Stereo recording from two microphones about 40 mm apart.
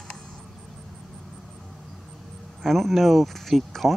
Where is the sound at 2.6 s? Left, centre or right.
Centre.